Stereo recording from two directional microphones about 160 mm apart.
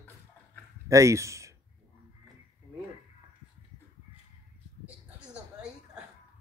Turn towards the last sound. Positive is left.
turn(degrees=-10)  # may be behind; listen again after turning